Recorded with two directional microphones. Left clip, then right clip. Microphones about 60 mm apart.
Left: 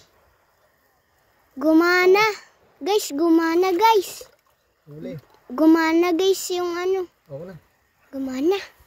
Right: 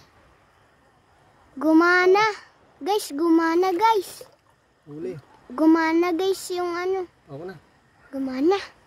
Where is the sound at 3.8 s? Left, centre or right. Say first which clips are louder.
Left 3 dB; left.